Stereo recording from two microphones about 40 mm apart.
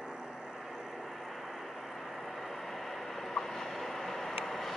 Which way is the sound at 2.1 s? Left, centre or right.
Centre.